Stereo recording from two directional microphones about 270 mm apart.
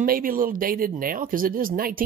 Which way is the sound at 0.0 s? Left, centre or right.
Right.